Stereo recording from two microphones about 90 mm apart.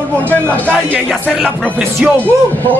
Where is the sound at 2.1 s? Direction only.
20° left (ahead or behind).